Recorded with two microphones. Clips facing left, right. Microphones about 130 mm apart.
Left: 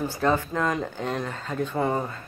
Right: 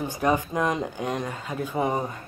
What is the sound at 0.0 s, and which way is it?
Speech, 15° right (ahead or behind).